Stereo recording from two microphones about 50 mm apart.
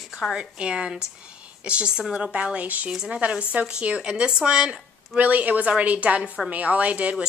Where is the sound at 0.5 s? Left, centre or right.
Right.